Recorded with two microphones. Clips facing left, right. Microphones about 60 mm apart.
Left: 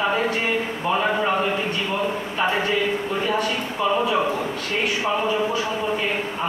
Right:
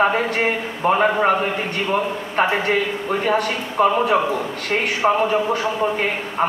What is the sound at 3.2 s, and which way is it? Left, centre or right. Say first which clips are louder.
Speech: right 4 dB; right.